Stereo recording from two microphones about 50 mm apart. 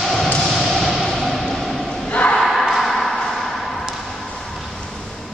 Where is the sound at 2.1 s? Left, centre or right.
Left.